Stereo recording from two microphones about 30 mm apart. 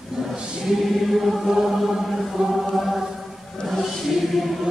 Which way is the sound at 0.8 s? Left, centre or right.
Centre.